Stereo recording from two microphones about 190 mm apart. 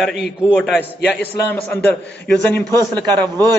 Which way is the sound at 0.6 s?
10° left (ahead or behind).